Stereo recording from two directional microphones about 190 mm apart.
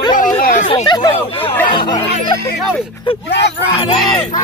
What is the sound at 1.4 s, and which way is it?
Chatter, 10° left (ahead or behind).